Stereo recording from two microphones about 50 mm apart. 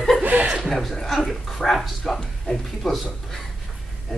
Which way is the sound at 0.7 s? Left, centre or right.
Centre.